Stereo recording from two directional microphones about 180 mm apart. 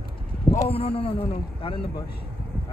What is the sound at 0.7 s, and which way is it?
Speech, 30° left (ahead or behind).